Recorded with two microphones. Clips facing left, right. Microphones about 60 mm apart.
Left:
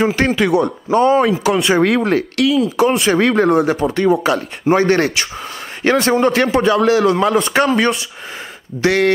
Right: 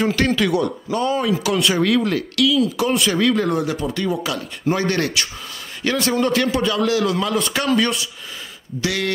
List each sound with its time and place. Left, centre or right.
0.0 s a man's voice: left